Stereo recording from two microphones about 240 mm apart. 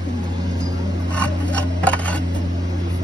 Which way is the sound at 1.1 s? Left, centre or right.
Centre.